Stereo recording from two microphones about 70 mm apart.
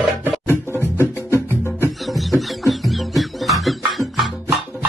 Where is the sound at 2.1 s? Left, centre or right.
Centre.